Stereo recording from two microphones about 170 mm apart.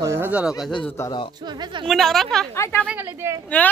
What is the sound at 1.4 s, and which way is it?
Speech, 25° right (ahead or behind).